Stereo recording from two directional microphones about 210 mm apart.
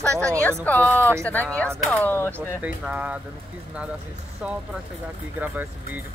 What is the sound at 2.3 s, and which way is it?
Speech, 5° right (ahead or behind).